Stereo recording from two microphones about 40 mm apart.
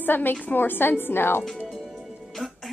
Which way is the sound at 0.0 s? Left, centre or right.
Left.